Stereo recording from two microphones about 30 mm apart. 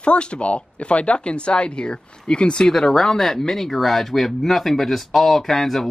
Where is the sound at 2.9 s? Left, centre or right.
Centre.